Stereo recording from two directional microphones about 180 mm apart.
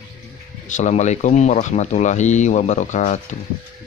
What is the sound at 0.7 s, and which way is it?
Speech, 40° left (ahead or behind).